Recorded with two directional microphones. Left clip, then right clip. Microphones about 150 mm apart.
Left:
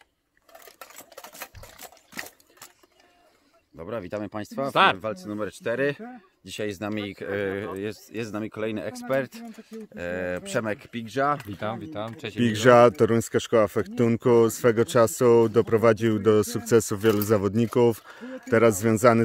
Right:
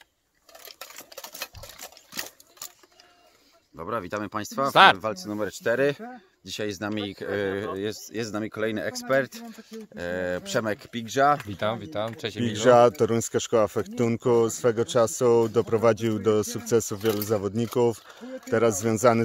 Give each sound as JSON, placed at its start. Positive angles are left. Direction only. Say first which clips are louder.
{"t": 0.5, "sound": "a sound", "louder": "right 2 dB", "side_deg": 15}
{"t": 1.4, "sound": "water", "louder": "right 3 dB", "side_deg": 5}
{"t": 3.7, "sound": "speech", "louder": "right 2 dB", "side_deg": 0}
{"t": 4.9, "sound": "speech", "louder": "right 1 dB", "side_deg": -5}
{"t": 6.0, "sound": "speech", "louder": "right 2 dB", "side_deg": 10}
{"t": 11.5, "sound": "speech", "louder": "right 4 dB", "side_deg": -40}
{"t": 12.4, "sound": "speech", "louder": "left 1 dB", "side_deg": 65}
{"t": 18.5, "sound": "speech", "louder": "left 3 dB", "side_deg": 45}